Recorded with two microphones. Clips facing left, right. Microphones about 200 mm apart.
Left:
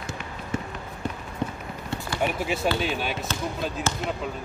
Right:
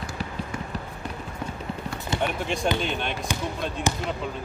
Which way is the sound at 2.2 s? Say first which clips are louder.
Left 1 dB; 5° left (ahead or behind).